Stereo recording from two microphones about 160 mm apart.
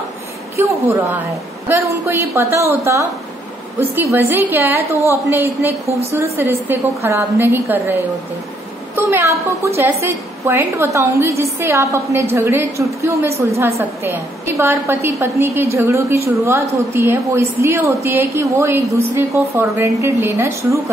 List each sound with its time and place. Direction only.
0.6 s a woman's voice: 15° right (ahead or behind)